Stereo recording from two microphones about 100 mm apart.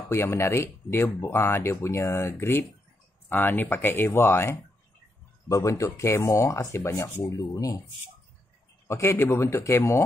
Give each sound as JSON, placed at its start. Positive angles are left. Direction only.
{"t": 0.1, "sound": "speech", "side_deg": 25}
{"t": 8.8, "sound": "speech", "side_deg": 30}